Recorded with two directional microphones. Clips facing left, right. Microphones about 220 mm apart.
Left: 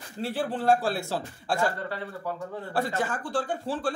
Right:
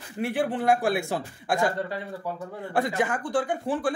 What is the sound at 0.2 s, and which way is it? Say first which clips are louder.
Speech: right 3 dB; 15° right (ahead or behind).